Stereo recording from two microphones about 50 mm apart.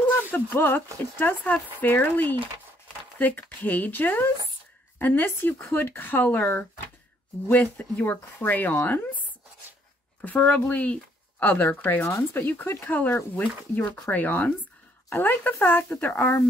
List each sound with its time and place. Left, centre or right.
0.0 s a sound: left
1.2 s speech: left
8.0 s speech: left
10.2 s speech: left
12.0 s speech: left
12.8 s speech: left
13.4 s speech: left
14.1 s speech: left